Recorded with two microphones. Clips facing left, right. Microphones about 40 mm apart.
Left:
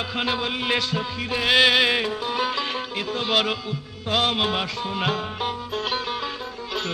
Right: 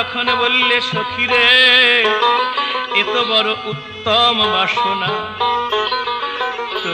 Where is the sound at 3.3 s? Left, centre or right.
Right.